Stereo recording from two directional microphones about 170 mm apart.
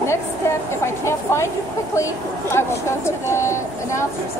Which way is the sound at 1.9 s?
15° left (ahead or behind).